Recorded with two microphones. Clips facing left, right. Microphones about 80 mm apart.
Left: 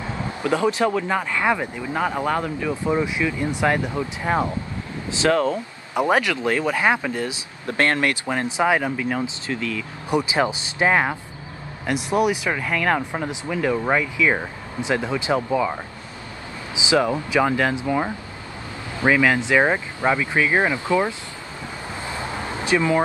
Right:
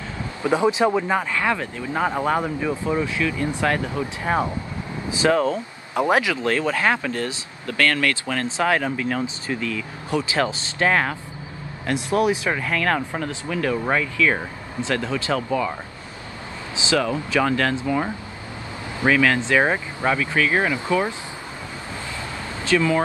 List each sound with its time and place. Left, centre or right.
0.4 s speech: centre
1.3 s speech: centre
2.0 s speech: centre
2.8 s speech: centre
5.2 s speech: centre
6.4 s speech: centre
7.6 s speech: left; by 9.8 s centre
10.0 s speech: centre
16.7 s speech: centre
22.1 s a sound: left